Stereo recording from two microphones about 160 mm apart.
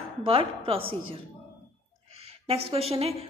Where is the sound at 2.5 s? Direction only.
40° right (ahead or behind).